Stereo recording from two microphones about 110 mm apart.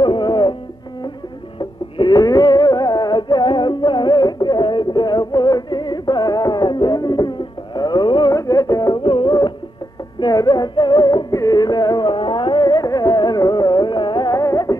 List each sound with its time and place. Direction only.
0.0 s music: 45° left (ahead or behind)
1.6 s music: 40° left (ahead or behind)
9.0 s music: 50° left (ahead or behind); by 14.8 s 35° left (ahead or behind)